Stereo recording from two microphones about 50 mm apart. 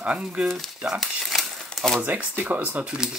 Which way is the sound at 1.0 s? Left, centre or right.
Centre.